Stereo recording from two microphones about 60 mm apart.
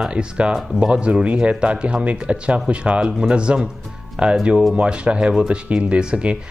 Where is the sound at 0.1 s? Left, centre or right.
Centre.